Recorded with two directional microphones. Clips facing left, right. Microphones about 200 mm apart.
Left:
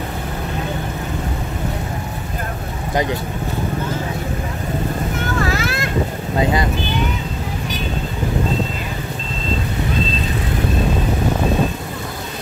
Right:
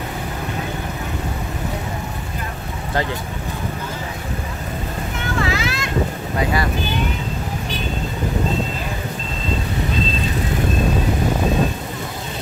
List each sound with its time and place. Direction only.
2.9 s speech: 15° left (ahead or behind)
5.4 s vehicle: 50° left (ahead or behind)